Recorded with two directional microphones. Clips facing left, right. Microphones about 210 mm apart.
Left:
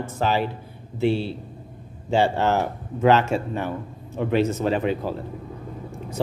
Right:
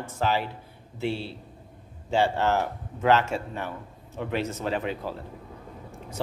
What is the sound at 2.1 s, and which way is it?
Speech, 20° left (ahead or behind).